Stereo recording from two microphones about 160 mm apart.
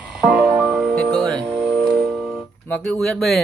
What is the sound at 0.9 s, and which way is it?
Music, 5° left (ahead or behind).